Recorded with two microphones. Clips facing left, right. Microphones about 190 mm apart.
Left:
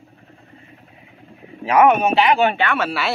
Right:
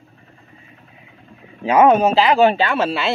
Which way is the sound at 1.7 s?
25° right (ahead or behind).